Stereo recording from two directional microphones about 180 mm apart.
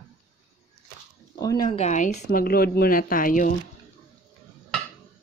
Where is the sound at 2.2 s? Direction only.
55° left (ahead or behind).